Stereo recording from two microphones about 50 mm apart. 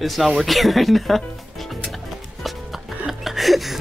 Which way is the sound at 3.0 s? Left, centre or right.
Centre.